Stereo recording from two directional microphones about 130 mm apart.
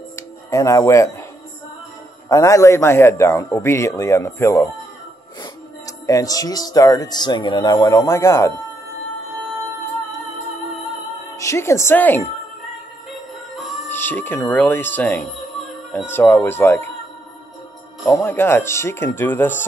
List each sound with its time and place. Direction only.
0.1 s a sound: 25° left (ahead or behind)
2.2 s a man's voice: 25° left (ahead or behind)
5.4 s music: 25° left (ahead or behind)
11.3 s a woman's voice: 20° left (ahead or behind)
13.8 s speech: 15° left (ahead or behind)
18.0 s speech: 20° left (ahead or behind)